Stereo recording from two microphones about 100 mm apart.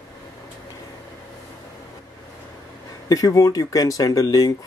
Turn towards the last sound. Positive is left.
turn(degrees=35)  # may be behind; listen again after turning